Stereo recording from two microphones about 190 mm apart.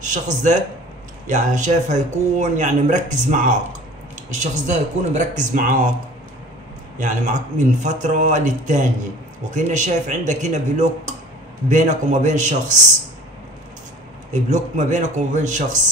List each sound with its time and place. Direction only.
0.0 s speech: 40° right (ahead or behind)
7.0 s speech: 40° right (ahead or behind)
14.3 s speech: 40° right (ahead or behind)